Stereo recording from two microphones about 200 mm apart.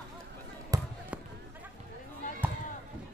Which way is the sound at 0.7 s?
15° right (ahead or behind).